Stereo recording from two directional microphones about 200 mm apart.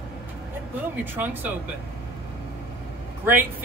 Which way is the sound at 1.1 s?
10° right (ahead or behind).